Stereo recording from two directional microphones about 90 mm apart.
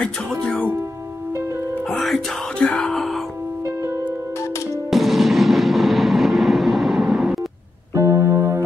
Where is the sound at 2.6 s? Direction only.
5° left (ahead or behind).